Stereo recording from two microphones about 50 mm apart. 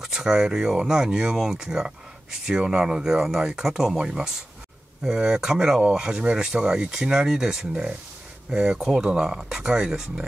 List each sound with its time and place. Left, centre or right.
0.0 s speech: centre
5.0 s speech: centre